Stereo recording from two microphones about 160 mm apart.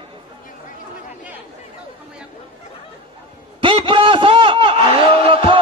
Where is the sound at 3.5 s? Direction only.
35° right (ahead or behind).